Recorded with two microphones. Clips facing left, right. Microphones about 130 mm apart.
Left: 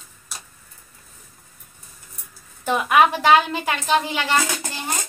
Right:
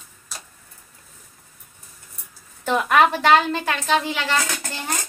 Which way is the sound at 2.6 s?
10° left (ahead or behind).